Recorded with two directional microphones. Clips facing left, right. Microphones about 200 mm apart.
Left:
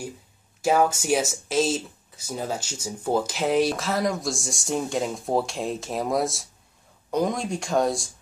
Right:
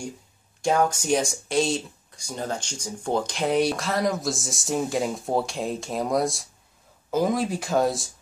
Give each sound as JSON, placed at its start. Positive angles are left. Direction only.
{"t": 0.6, "sound": "speech", "side_deg": 5}